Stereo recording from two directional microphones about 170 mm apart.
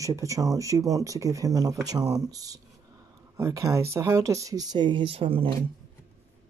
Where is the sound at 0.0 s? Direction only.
20° right (ahead or behind).